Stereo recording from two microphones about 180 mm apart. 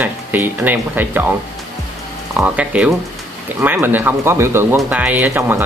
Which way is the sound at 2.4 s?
5° right (ahead or behind).